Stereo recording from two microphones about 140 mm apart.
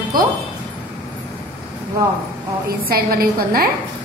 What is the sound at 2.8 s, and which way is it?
Speech, 90° right.